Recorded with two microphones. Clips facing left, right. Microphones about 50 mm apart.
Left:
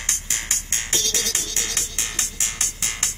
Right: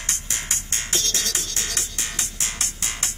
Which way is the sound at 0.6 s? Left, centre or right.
Left.